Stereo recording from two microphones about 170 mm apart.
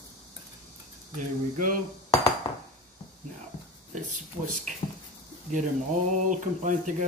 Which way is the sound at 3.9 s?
45° right (ahead or behind).